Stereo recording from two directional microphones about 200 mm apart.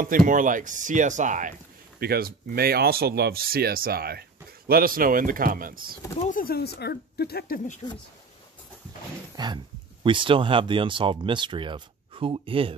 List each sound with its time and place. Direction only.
0.0 s speech: 40° right (ahead or behind)
2.0 s speech: 50° right (ahead or behind)
6.2 s speech: 45° left (ahead or behind)
9.4 s speech: 20° right (ahead or behind)